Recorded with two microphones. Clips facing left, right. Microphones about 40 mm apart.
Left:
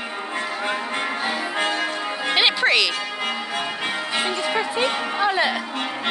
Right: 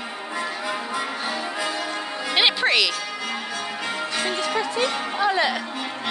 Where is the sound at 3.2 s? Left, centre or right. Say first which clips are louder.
Left 4 dB; left.